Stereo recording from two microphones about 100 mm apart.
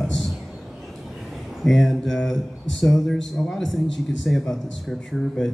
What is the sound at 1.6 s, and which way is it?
Speech, centre (ahead or behind).